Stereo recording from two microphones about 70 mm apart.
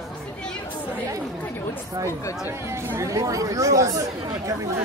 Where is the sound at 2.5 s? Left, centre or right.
Right.